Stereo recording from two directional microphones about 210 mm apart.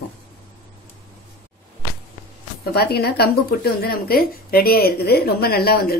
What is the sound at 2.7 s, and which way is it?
Speech, 50° left (ahead or behind).